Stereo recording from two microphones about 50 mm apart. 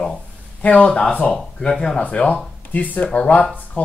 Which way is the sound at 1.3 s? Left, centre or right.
Centre.